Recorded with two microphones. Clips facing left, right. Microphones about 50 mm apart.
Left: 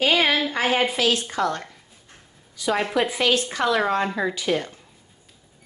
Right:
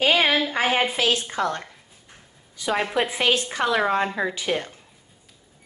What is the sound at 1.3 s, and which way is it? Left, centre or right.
Speech, right.